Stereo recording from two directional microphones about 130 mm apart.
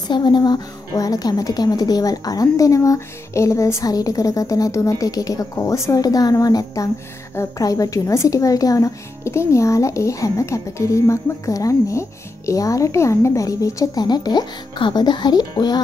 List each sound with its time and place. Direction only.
0.1 s speech: 35° left (ahead or behind)